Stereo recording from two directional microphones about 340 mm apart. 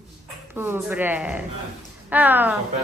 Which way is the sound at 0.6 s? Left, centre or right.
Centre.